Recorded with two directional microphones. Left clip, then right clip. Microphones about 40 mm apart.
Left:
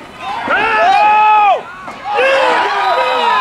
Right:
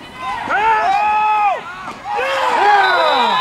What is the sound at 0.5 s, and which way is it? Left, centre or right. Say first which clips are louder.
Run: left 1 dB; left.